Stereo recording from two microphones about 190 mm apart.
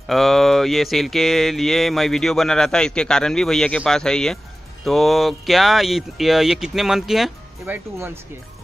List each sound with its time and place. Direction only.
0.0 s speech: centre (ahead or behind)